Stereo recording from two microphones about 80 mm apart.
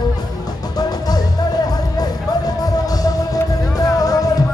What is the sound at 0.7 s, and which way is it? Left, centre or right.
Music, left.